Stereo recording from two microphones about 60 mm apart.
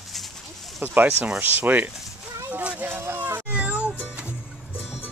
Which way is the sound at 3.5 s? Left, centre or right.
Right.